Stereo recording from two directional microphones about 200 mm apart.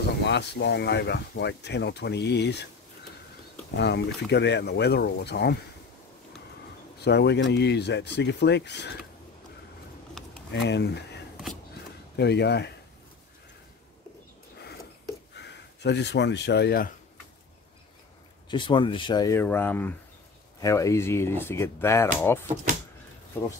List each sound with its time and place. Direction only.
0.2 s speech: 60° left (ahead or behind)
3.7 s speech: 55° left (ahead or behind)
7.0 s speech: 55° left (ahead or behind)
10.5 s speech: 60° left (ahead or behind)
12.2 s speech: 55° left (ahead or behind)
15.3 s speech: 60° left (ahead or behind)
18.5 s speech: 25° left (ahead or behind)